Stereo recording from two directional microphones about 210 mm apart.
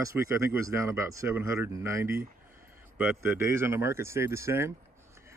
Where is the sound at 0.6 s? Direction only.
15° right (ahead or behind).